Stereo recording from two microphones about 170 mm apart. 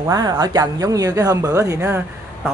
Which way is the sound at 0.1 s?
20° right (ahead or behind).